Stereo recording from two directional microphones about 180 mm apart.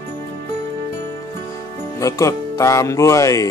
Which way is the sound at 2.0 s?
20° left (ahead or behind).